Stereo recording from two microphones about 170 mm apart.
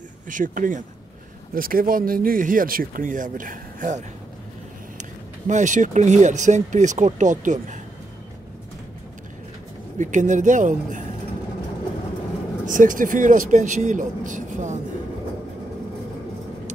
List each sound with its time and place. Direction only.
0.3 s speech: 50° right (ahead or behind)
5.5 s speech: 45° right (ahead or behind)
9.9 s speech: 45° right (ahead or behind)
12.6 s speech: 50° right (ahead or behind)